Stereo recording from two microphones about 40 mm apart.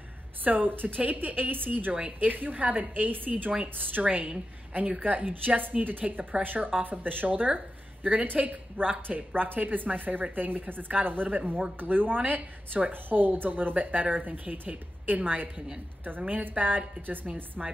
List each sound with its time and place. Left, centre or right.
0.4 s a woman's voice: right
1.0 s a woman's voice: right
4.0 s a woman's voice: right
17.6 s a woman's voice: centre